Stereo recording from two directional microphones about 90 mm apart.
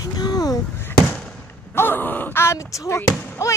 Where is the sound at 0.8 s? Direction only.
25° left (ahead or behind).